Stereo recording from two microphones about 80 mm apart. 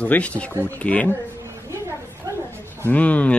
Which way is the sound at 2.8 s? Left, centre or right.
Centre.